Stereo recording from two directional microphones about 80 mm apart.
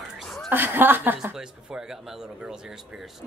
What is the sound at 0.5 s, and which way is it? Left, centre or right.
Speech, right.